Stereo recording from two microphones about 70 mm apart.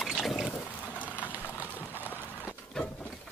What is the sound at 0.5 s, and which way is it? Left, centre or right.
Boat, left.